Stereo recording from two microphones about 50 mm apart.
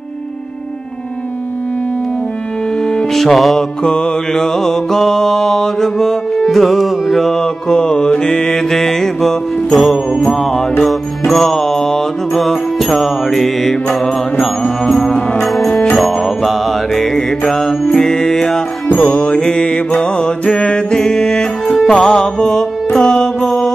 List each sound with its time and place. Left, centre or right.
2.8 s music: centre
3.8 s music: centre
15.7 s music: centre
16.0 s music: centre
18.9 s mantra: left
20.0 s music: centre
23.4 s mantra: centre